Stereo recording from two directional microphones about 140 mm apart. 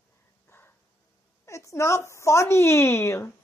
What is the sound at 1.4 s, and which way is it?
A child's voice, 20° left (ahead or behind).